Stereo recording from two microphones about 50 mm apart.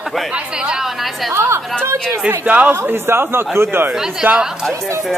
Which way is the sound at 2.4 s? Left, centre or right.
Right.